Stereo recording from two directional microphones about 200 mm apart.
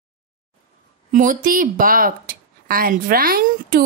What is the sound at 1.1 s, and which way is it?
Speech, 40° right (ahead or behind).